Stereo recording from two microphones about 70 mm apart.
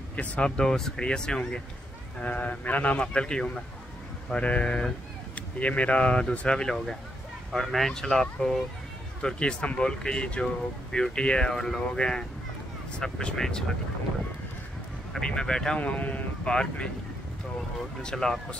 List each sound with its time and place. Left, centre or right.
0.1 s speech: centre
15.1 s speech: centre
15.8 s speech: left
18.0 s speech: centre